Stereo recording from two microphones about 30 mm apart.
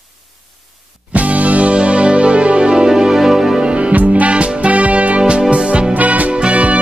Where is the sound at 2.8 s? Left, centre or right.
Right.